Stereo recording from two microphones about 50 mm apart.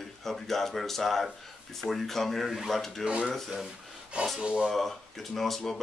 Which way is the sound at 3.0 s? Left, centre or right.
Centre.